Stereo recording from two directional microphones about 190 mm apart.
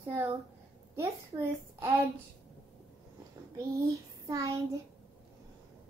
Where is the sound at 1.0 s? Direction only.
15° right (ahead or behind).